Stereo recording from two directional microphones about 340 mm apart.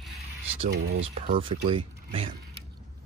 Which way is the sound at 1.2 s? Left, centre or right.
Centre.